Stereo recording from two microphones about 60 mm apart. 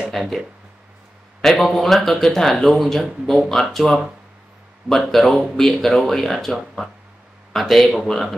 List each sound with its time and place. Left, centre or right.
0.2 s speech: centre
1.4 s speech: centre